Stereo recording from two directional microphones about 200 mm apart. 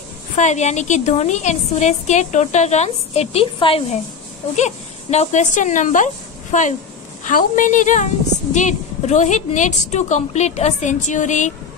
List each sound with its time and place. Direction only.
0.4 s a woman's voice: 35° left (ahead or behind)